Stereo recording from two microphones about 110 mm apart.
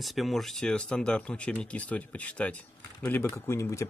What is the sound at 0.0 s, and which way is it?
Speech, centre (ahead or behind).